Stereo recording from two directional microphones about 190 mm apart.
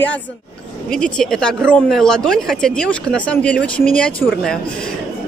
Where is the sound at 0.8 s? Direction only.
5° left (ahead or behind).